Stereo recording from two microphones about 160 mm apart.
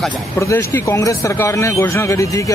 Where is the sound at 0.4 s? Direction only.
15° left (ahead or behind).